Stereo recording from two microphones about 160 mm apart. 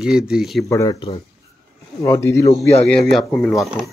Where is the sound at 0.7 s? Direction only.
20° left (ahead or behind).